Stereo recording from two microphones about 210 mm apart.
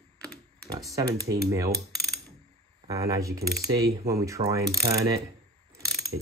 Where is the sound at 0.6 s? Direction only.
15° right (ahead or behind).